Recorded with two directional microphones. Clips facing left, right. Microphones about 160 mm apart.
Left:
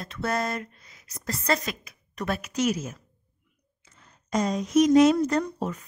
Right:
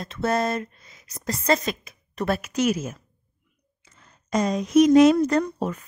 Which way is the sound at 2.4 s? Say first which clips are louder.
Right 3 dB; 55° right (ahead or behind).